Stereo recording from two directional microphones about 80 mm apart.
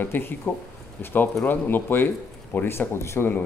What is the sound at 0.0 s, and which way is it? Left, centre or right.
Speech, left.